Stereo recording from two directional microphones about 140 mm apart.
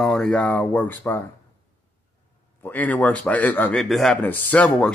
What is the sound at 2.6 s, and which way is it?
Speech, 10° left (ahead or behind).